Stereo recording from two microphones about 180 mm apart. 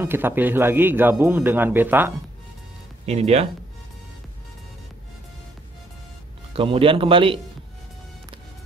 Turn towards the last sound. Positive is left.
turn(degrees=-30)  # may be behind; listen again after turning